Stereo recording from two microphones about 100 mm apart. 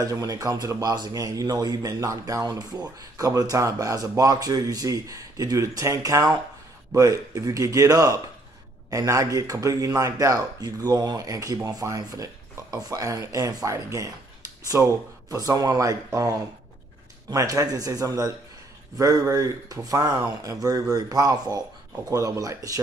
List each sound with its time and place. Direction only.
0.0 s speech: 35° right (ahead or behind)